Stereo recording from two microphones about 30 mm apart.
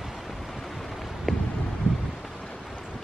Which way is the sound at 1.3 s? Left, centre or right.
Centre.